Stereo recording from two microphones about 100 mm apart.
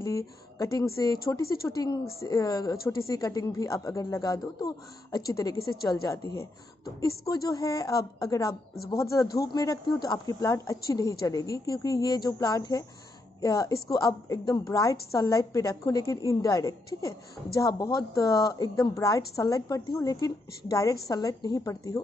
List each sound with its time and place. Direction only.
0.0 s a woman's voice: 35° left (ahead or behind)